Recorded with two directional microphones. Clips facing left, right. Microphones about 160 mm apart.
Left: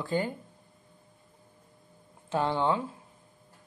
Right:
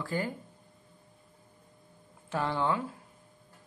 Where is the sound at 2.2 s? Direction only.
25° left (ahead or behind).